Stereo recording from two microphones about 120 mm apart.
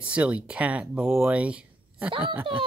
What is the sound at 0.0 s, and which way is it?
Speech, 10° right (ahead or behind).